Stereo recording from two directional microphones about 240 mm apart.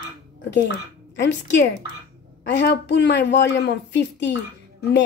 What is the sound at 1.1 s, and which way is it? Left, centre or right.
A woman's voice, left.